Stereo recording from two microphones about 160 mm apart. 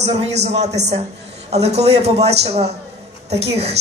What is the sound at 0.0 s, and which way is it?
A man's voice, 45° right (ahead or behind).